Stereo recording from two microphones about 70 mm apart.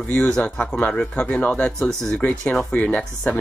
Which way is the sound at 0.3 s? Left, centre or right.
Centre.